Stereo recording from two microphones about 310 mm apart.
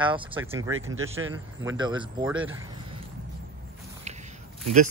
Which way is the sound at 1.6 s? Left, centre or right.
Centre.